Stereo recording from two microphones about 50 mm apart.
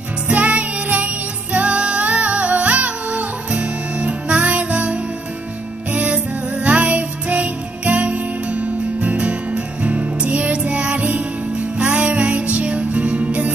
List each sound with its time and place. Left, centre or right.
0.3 s music: right